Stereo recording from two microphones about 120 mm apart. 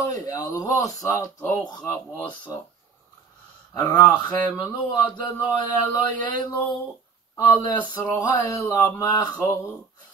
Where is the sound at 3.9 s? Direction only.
15° left (ahead or behind).